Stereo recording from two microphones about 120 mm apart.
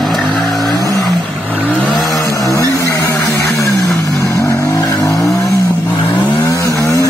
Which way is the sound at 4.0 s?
25° left (ahead or behind).